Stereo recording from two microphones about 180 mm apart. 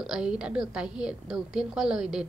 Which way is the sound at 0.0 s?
5° right (ahead or behind).